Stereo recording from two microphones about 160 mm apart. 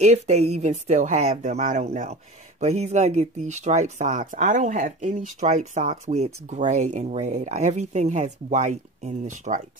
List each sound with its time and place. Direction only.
0.0 s speech: 45° right (ahead or behind)